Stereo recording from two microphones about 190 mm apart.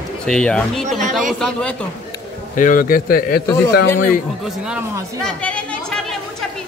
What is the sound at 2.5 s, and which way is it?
A man's voice, 45° left (ahead or behind).